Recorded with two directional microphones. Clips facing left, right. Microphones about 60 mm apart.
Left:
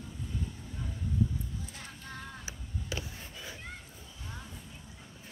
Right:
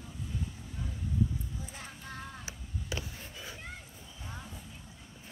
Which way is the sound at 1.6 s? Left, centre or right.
Centre.